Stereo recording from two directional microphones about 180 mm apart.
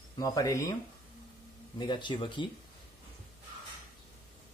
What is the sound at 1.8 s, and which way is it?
Speech, 25° left (ahead or behind).